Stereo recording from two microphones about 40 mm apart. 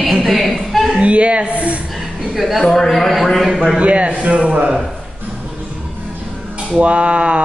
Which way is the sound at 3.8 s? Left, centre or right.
Right.